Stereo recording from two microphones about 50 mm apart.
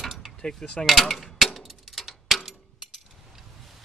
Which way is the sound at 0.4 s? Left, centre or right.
Centre.